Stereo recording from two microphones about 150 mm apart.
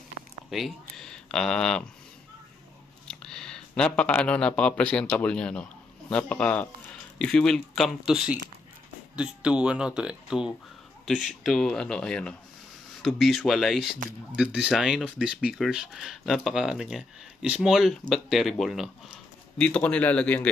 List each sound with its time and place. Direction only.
0.5 s speech: centre (ahead or behind)
3.1 s a man's voice: 5° left (ahead or behind)